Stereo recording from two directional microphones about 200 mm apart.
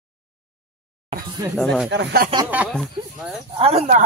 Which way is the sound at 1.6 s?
5° left (ahead or behind).